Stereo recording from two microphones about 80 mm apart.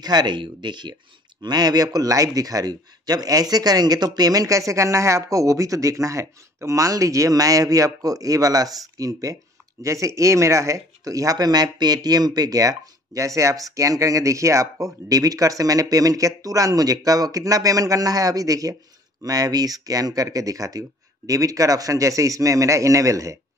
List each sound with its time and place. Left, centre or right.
0.0 s speech: right
1.4 s speech: right